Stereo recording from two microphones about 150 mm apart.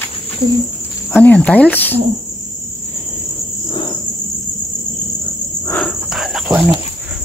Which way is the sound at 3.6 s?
30° left (ahead or behind).